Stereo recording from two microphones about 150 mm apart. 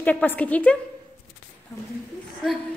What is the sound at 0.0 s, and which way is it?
Speech, 10° left (ahead or behind).